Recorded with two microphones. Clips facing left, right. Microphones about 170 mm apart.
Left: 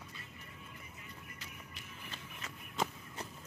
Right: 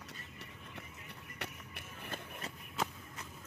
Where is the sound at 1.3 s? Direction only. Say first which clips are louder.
Right 5 dB; 65° right (ahead or behind).